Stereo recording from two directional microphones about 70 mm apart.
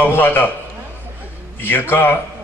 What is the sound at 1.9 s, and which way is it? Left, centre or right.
Speech, left.